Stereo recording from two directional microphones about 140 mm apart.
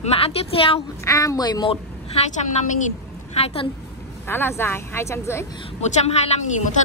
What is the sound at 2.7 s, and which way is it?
Speech, 55° left (ahead or behind).